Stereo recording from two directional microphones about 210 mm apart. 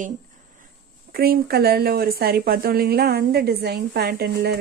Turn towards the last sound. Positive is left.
turn(degrees=-50)  # may be behind; listen again after turning